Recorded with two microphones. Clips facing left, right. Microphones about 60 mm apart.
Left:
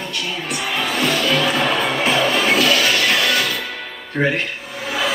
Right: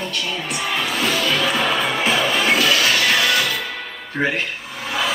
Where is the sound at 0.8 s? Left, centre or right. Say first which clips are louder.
Left 3 dB; centre.